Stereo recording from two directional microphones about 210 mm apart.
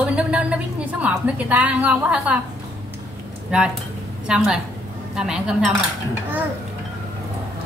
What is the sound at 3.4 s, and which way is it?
A woman's voice, 5° right (ahead or behind).